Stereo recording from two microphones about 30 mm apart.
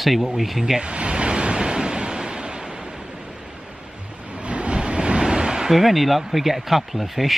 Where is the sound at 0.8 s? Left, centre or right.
Right.